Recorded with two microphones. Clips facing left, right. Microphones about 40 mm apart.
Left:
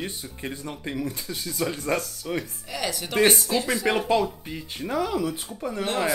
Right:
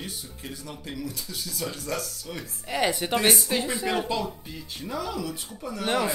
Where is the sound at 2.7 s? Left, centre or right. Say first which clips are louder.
Right 6 dB; right.